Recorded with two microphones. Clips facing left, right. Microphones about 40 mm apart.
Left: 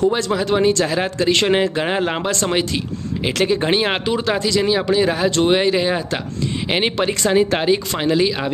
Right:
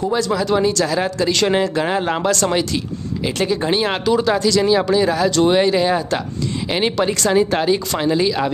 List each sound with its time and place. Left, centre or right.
0.1 s speech: left
5.6 s speech: centre
6.7 s speech: left